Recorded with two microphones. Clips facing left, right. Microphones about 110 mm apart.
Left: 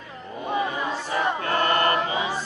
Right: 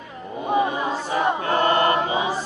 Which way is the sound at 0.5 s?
20° right (ahead or behind).